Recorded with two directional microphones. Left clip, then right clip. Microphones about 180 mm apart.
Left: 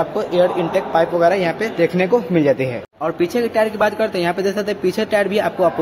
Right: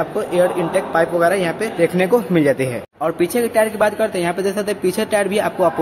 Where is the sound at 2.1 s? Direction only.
Centre (ahead or behind).